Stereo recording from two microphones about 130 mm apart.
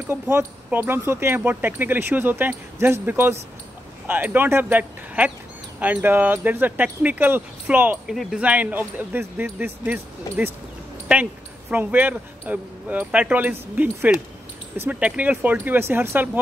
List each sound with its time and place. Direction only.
0.0 s speech: 15° right (ahead or behind)
8.1 s speech: centre (ahead or behind)
11.7 s speech: 15° right (ahead or behind)